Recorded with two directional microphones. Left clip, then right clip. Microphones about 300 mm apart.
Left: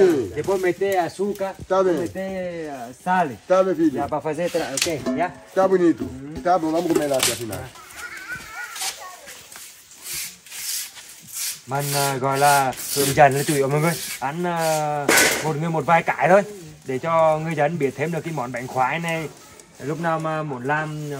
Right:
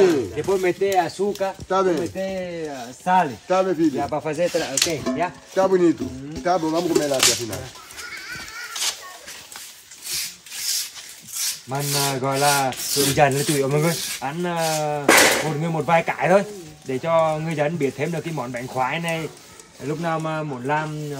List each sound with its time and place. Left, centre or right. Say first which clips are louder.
0.0 s speech: even; centre
11.7 s speech: left 2 dB; centre
15.0 s speech: right 4 dB; right
15.6 s speech: left 3 dB; centre